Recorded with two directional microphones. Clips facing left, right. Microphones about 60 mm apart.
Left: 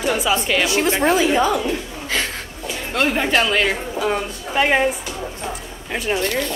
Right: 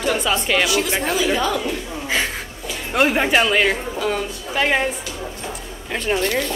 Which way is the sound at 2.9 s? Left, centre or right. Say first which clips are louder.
Right 2 dB; centre.